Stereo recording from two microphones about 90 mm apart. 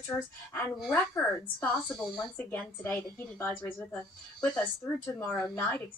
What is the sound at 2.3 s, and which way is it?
A woman's voice, 20° left (ahead or behind).